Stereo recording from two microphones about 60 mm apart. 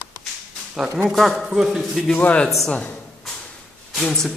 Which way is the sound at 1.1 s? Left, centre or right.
Centre.